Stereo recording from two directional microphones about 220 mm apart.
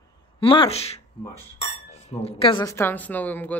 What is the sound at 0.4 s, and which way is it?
Speech, 25° left (ahead or behind).